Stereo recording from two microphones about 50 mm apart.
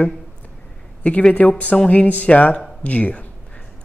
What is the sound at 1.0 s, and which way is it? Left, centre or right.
Speech, left.